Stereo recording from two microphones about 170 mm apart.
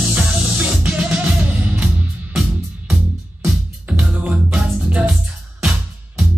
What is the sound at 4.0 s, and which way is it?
Music, 10° right (ahead or behind).